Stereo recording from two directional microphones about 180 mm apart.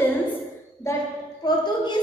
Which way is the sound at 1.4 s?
20° left (ahead or behind).